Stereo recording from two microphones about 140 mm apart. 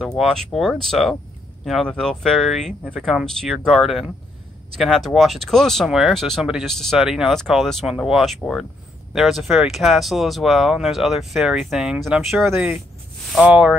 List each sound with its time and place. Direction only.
0.0 s speech: 5° left (ahead or behind)